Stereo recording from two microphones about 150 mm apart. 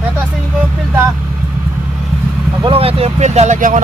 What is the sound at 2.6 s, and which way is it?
Speech, 40° right (ahead or behind).